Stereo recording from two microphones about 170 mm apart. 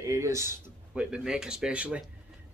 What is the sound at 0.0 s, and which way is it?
Speech, 15° right (ahead or behind).